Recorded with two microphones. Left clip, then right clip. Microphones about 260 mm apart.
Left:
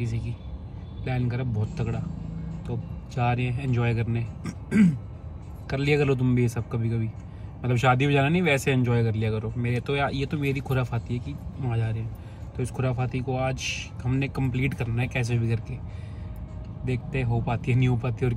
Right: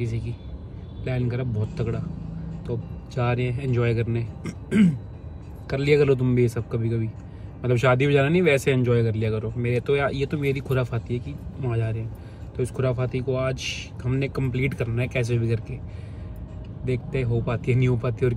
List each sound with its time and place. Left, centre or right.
1.0 s speech: centre
3.2 s speech: centre
16.8 s speech: centre